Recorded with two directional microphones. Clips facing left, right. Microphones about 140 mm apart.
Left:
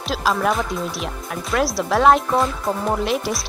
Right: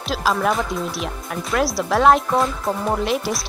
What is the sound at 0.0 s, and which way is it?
Speech, centre (ahead or behind).